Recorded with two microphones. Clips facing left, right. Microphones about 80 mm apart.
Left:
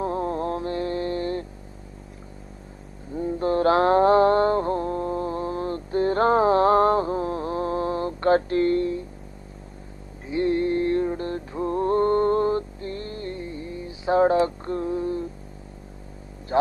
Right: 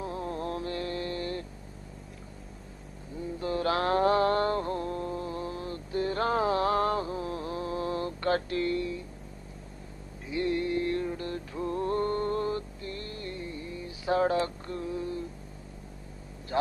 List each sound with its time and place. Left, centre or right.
0.0 s mantra: left
3.2 s mantra: left
10.3 s music: left